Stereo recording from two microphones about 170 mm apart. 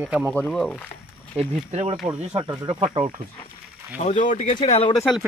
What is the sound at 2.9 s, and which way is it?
Speech, 30° right (ahead or behind).